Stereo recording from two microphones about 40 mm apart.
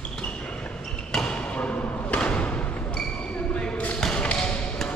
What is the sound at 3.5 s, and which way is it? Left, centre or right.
Basketball bounce, left.